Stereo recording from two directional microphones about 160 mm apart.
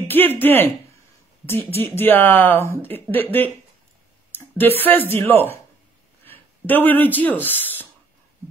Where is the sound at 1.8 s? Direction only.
15° left (ahead or behind).